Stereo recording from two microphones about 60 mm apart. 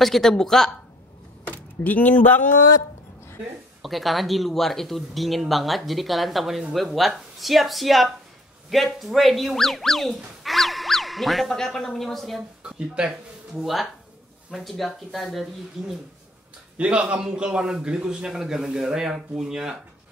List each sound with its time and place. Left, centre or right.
0.0 s speech: centre
1.5 s speech: left
3.8 s speech: centre
12.4 s a man's voice: centre
13.6 s speech: centre
16.7 s a man's voice: centre